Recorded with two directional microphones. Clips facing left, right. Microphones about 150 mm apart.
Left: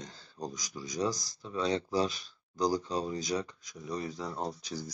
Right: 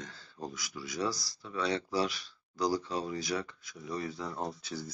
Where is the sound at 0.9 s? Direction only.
20° left (ahead or behind).